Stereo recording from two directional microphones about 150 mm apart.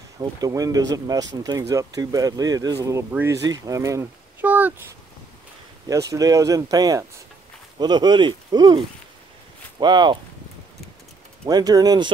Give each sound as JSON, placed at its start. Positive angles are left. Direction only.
{"t": 0.2, "sound": "speech", "side_deg": -25}
{"t": 6.1, "sound": "speech", "side_deg": -20}
{"t": 11.4, "sound": "speech", "side_deg": -25}